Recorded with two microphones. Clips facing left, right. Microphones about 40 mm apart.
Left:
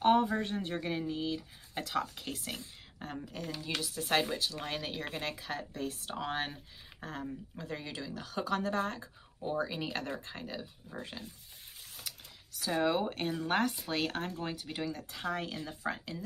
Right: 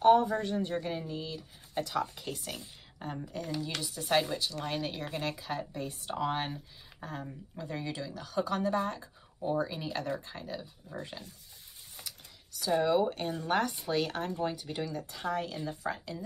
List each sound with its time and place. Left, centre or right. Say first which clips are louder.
0.0 s a woman's voice: right 3 dB; left; by 9.0 s centre
9.4 s speech: right 2 dB; centre
10.4 s speech: right 1 dB; centre
12.0 s a sound: even; centre
12.8 s speech: right 1 dB; centre
15.8 s speech: right 1 dB; centre